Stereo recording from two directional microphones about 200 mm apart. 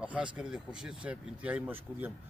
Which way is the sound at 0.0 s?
5° right (ahead or behind).